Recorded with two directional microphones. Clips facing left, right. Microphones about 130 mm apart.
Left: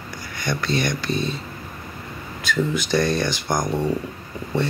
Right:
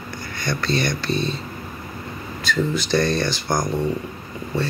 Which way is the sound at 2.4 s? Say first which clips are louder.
Even; 15° left (ahead or behind).